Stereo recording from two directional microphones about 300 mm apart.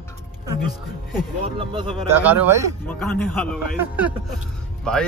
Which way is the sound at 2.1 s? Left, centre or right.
Centre.